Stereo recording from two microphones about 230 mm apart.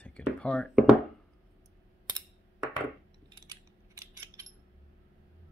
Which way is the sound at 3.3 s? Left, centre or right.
Centre.